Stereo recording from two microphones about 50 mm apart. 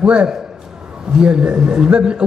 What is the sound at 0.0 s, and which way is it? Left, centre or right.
A man's voice, right.